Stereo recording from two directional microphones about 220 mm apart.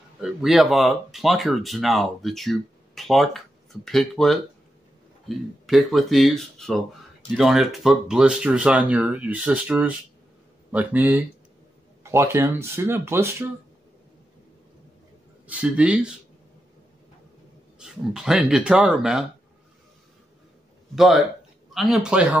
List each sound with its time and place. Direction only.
0.2 s speech: centre (ahead or behind)
15.4 s speech: 5° right (ahead or behind)
17.7 s speech: 5° right (ahead or behind)
20.9 s speech: centre (ahead or behind)